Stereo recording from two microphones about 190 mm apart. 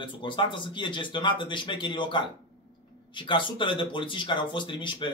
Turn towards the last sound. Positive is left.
turn(degrees=25)  # may be behind; listen again after turning